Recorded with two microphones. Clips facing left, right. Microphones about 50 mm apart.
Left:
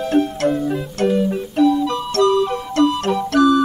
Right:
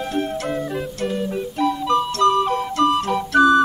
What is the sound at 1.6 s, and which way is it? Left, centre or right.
Music, right.